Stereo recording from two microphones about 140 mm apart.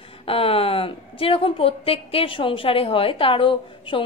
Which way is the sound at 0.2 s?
40° left (ahead or behind).